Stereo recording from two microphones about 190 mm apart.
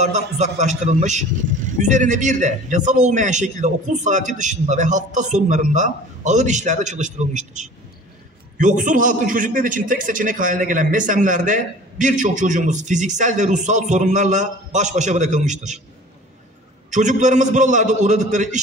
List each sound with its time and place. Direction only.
0.0 s a man's voice: 40° right (ahead or behind)
16.9 s a man's voice: 40° right (ahead or behind)